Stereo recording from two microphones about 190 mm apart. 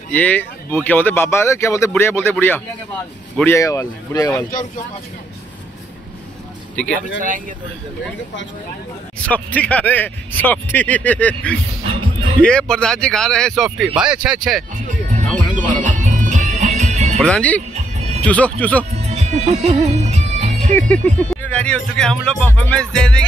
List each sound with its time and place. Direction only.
0.1 s speech: 10° left (ahead or behind)
7.0 s speech: 45° right (ahead or behind)
9.3 s speech: 10° left (ahead or behind)
15.1 s music: 40° right (ahead or behind)
17.2 s speech: 5° left (ahead or behind)
17.7 s music: 35° right (ahead or behind)
18.2 s speech: 5° left (ahead or behind)
18.9 s music: 35° right (ahead or behind)
20.7 s speech: 10° left (ahead or behind)